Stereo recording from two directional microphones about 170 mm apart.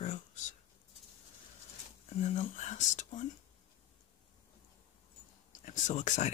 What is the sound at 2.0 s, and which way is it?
Speech, 40° left (ahead or behind).